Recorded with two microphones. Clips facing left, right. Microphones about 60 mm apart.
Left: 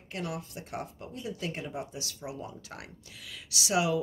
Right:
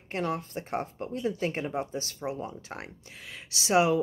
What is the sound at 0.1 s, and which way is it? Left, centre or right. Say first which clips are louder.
A woman's voice: right 6 dB; right.